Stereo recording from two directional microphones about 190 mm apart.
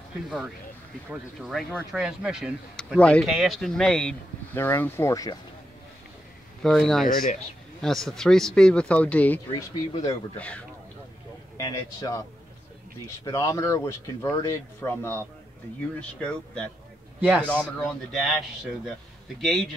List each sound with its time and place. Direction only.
1.1 s speech: centre (ahead or behind); by 5.4 s 20° left (ahead or behind)
6.6 s speech: centre (ahead or behind)
7.1 s speech: 50° left (ahead or behind)
7.8 s speech: centre (ahead or behind)
9.5 s speech: 20° left (ahead or behind)
10.3 s speech: 5° left (ahead or behind)
11.5 s speech: 20° left (ahead or behind)
13.2 s speech: 20° left (ahead or behind)
17.2 s a man's voice: 10° right (ahead or behind)
17.7 s speech: 5° left (ahead or behind)
19.4 s speech: centre (ahead or behind)